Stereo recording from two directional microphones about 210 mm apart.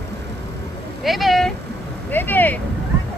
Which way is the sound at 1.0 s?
Centre (ahead or behind).